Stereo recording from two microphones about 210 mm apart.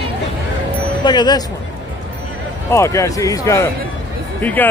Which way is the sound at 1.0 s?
20° left (ahead or behind).